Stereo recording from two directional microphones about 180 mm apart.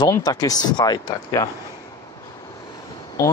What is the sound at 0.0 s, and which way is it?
Speech, 20° left (ahead or behind).